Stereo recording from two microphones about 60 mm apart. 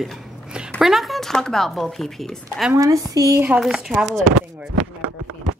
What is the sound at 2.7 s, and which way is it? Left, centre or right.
Speech, right.